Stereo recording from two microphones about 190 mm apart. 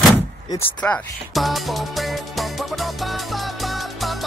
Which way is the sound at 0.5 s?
10° left (ahead or behind).